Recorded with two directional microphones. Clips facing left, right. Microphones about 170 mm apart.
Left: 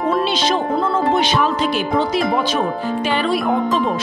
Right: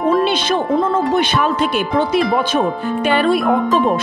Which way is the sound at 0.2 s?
55° right (ahead or behind).